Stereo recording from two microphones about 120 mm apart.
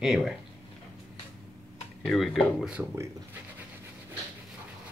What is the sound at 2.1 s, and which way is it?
Speech, centre (ahead or behind).